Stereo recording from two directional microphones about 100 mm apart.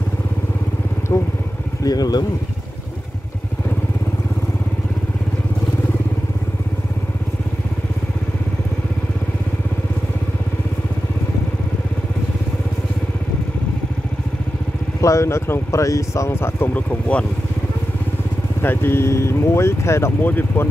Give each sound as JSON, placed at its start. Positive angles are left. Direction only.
{"t": 1.1, "sound": "speech", "side_deg": 25}
{"t": 1.8, "sound": "speech", "side_deg": 40}
{"t": 15.0, "sound": "speech", "side_deg": 30}
{"t": 18.6, "sound": "speech", "side_deg": 20}